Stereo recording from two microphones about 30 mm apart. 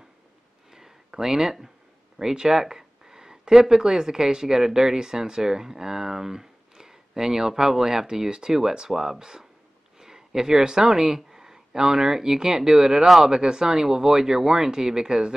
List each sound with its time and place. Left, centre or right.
0.7 s a sound: centre
2.1 s speech: right
13.0 s speech: centre
13.3 s speech: right